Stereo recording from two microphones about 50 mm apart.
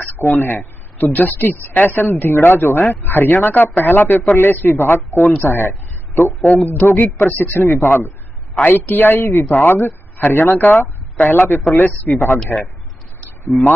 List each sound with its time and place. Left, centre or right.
0.3 s speech: left
6.4 s a man's voice: left
10.6 s speech: left
11.2 s speech: left
12.5 s speech: centre